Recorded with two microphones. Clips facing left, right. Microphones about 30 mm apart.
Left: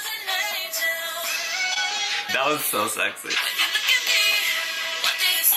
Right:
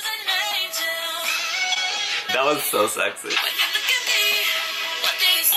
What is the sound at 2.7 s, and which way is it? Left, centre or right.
Speech, centre.